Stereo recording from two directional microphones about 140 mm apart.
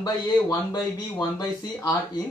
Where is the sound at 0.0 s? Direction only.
25° left (ahead or behind).